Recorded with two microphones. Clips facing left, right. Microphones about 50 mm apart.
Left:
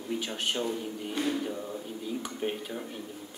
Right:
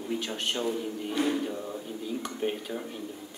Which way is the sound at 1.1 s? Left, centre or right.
Centre.